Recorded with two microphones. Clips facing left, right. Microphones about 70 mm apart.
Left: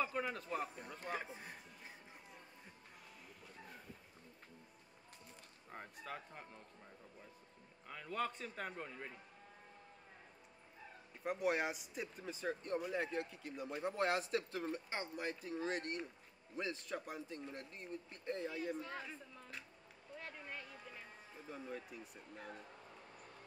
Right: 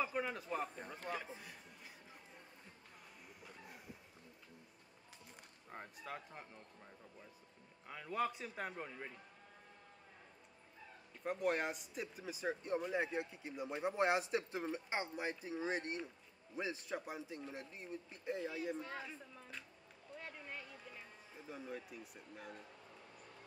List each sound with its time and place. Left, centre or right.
0.0 s a man's voice: centre
1.1 s a man's voice: left
3.6 s a sound: centre
5.7 s speech: centre
7.9 s a man's voice: centre
11.2 s a man's voice: centre
20.2 s a sound: centre
21.5 s speech: centre